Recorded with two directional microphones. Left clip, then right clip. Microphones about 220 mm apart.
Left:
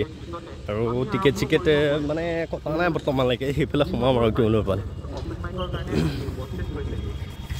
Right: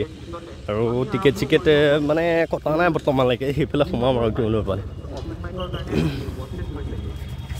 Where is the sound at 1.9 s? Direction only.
30° right (ahead or behind).